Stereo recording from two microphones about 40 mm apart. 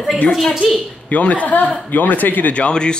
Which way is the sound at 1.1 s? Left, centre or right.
Left.